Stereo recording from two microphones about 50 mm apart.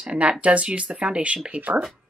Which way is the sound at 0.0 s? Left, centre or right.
Right.